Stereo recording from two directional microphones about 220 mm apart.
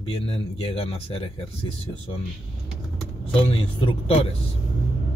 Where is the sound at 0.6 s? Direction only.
25° left (ahead or behind).